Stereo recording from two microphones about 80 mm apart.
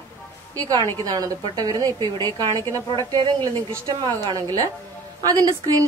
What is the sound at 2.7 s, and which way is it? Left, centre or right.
A woman's voice, right.